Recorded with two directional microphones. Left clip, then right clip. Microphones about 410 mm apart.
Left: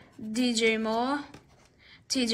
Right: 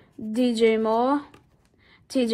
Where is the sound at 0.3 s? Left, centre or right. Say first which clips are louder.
Right 5 dB; centre.